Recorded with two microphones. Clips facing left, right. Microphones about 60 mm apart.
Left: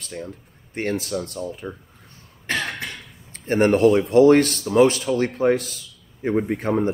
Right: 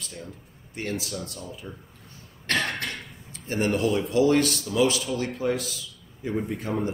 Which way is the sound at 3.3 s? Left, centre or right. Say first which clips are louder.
Left 8 dB; left.